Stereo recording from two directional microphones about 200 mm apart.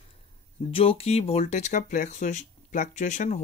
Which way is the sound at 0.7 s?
30° left (ahead or behind).